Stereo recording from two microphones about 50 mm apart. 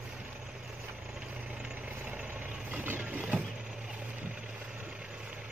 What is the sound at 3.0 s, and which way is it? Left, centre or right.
Vehicle, right.